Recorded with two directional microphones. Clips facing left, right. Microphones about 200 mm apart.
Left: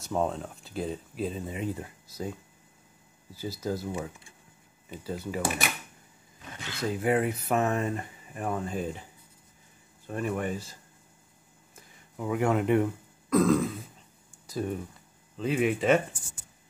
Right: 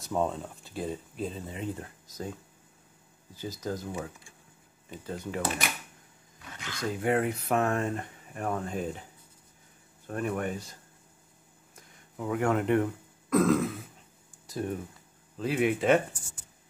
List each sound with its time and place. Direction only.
0.0 s speech: centre (ahead or behind)
3.3 s speech: 10° left (ahead or behind)
6.5 s roaring cats: 25° left (ahead or behind)
7.0 s speech: 5° left (ahead or behind)
10.0 s speech: centre (ahead or behind)
11.7 s a sound: 5° left (ahead or behind)
13.3 s speech: centre (ahead or behind)
15.3 s speech: 5° right (ahead or behind)